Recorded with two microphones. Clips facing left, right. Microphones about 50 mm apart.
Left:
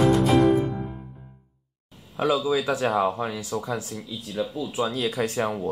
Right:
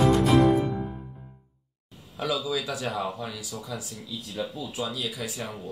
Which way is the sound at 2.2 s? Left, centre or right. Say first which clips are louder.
Left 6 dB; left.